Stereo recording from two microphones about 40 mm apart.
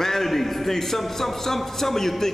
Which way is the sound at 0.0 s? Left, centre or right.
Centre.